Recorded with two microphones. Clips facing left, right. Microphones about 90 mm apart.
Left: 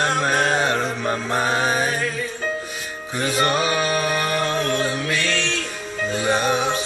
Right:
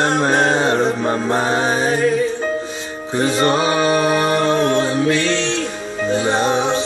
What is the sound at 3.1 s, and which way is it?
Music, 30° right (ahead or behind).